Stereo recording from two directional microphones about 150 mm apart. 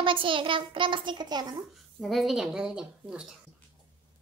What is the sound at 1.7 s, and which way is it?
Speech, centre (ahead or behind).